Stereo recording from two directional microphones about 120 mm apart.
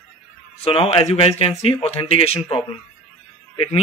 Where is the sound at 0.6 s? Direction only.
55° left (ahead or behind).